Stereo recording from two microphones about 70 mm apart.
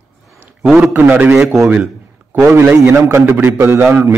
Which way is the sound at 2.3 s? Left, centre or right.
Right.